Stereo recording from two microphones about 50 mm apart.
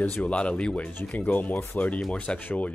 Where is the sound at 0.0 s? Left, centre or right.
Left.